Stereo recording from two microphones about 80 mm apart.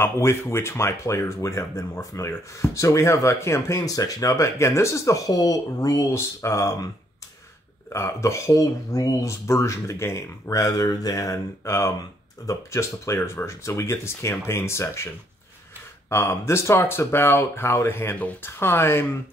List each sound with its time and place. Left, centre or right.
0.0 s speech: left
7.9 s speech: left
10.6 s speech: left
16.1 s speech: left